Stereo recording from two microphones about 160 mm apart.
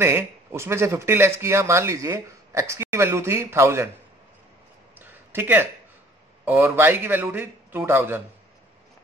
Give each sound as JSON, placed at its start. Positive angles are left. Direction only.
{"t": 0.0, "sound": "speech", "side_deg": -15}
{"t": 4.9, "sound": "a sound", "side_deg": -10}
{"t": 6.4, "sound": "speech", "side_deg": -10}